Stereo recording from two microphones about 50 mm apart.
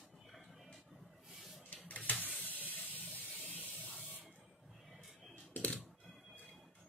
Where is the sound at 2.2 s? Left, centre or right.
Left.